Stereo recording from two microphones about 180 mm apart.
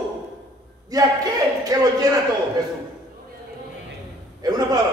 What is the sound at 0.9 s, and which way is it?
Speech, 20° right (ahead or behind).